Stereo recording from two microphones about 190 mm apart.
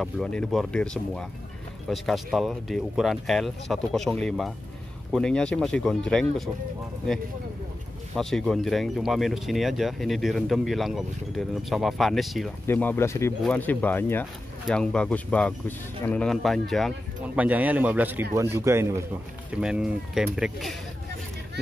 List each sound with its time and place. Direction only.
0.0 s speech: 5° left (ahead or behind)
8.2 s speech: centre (ahead or behind)
12.6 s speech: 10° left (ahead or behind); by 19.0 s 15° right (ahead or behind)
19.5 s speech: 5° right (ahead or behind)